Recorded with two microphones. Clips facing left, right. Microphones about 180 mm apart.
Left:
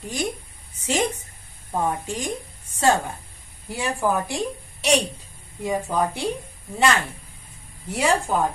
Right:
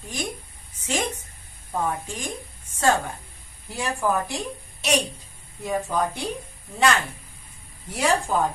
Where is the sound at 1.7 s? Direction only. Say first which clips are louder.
Left 2 dB; 15° left (ahead or behind).